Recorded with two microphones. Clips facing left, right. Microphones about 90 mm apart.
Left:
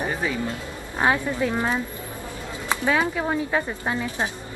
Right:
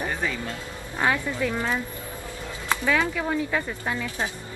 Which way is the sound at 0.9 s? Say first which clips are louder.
Left 3 dB; 25° left (ahead or behind).